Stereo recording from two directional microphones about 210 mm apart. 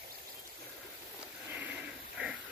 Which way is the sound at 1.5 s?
5° right (ahead or behind).